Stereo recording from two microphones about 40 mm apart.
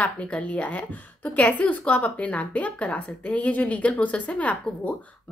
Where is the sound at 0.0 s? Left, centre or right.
Left.